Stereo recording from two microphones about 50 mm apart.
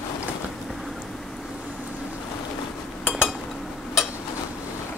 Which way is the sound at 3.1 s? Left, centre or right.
Centre.